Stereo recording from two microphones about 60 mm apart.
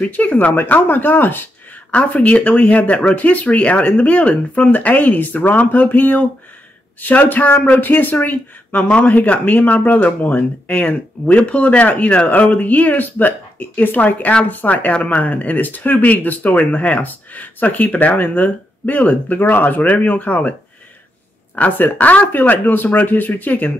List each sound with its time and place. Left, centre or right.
0.0 s speech: left
2.0 s speech: left
21.5 s speech: left